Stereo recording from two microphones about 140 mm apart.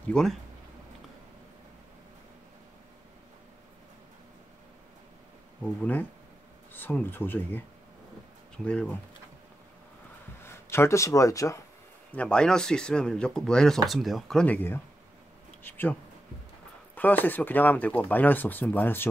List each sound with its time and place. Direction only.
0.1 s speech: centre (ahead or behind)
5.6 s speech: 10° left (ahead or behind)
8.6 s speech: 10° left (ahead or behind)
10.4 s speech: 20° left (ahead or behind)
12.1 s speech: 10° left (ahead or behind)